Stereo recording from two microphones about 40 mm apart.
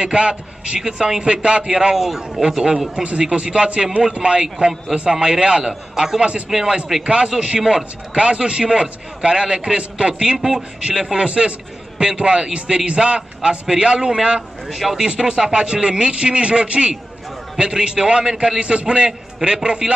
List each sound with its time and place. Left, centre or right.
0.0 s a man's voice: right
0.7 s a man's voice: centre
1.1 s a man's voice: right
2.0 s a man's voice: centre; by 5.6 s right
5.6 s a man's voice: centre
14.7 s a man's voice: centre
15.0 s a man's voice: centre